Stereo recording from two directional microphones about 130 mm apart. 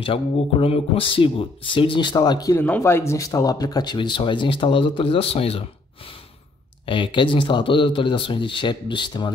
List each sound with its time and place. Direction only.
0.0 s speech: 45° left (ahead or behind)
2.5 s speech: 15° left (ahead or behind); by 9.3 s 35° left (ahead or behind)